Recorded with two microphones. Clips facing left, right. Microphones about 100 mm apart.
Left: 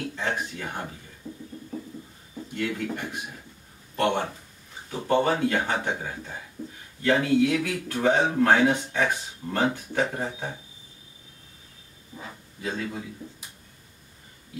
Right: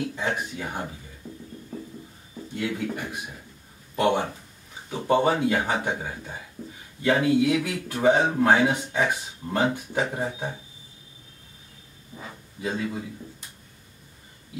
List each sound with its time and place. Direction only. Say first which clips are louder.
0.1 s speech: right 1 dB; 10° right (ahead or behind)
1.2 s music: left 2 dB; 15° right (ahead or behind)
2.5 s speech: right 1 dB; 5° right (ahead or behind)
3.9 s a sound: right 2 dB; 10° right (ahead or behind)
5.0 s speech: right 1 dB; 15° right (ahead or behind)